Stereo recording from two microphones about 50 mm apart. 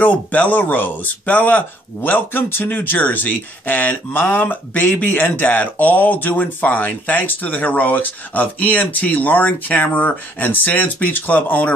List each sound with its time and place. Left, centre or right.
0.0 s speech: left
2.0 s speech: left